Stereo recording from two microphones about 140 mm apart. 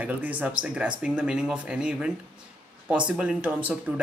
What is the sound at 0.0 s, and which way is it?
Speech, 10° right (ahead or behind).